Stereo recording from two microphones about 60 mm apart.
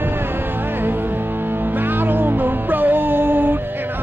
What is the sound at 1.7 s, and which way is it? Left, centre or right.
Music, right.